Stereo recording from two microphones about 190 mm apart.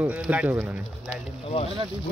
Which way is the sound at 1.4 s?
30° left (ahead or behind).